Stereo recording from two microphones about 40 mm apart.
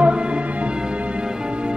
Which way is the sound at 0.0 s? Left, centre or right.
Right.